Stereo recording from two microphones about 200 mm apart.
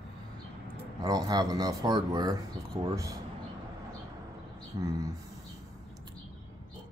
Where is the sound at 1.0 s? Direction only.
20° right (ahead or behind).